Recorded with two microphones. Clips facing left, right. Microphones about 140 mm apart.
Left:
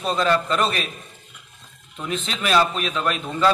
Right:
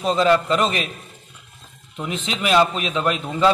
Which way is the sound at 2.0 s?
20° right (ahead or behind).